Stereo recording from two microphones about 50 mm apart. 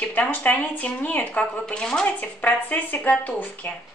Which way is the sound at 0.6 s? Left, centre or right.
Left.